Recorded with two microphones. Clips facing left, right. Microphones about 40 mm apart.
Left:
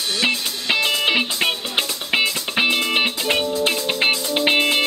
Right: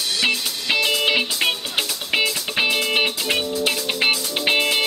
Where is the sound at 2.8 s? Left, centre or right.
Centre.